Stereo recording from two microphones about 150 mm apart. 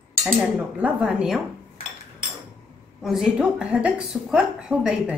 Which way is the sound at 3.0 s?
Centre (ahead or behind).